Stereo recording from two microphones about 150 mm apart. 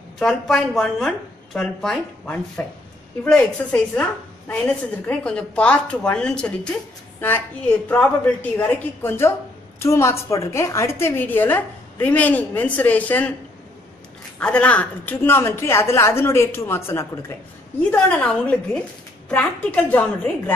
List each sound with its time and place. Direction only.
0.2 s a woman's voice: centre (ahead or behind)
14.4 s a woman's voice: 10° left (ahead or behind)